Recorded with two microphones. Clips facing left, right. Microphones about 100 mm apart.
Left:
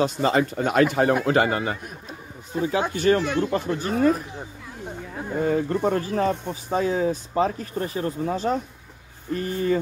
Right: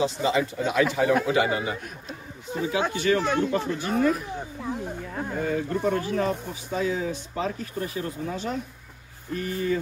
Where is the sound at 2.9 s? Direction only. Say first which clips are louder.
Left 3 dB; 45° left (ahead or behind).